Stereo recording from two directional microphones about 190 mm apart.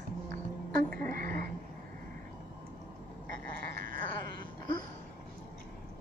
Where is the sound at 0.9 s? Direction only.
50° right (ahead or behind).